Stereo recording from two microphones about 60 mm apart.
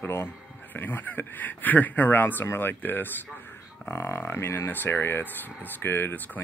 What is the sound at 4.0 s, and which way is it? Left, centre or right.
Speech, left.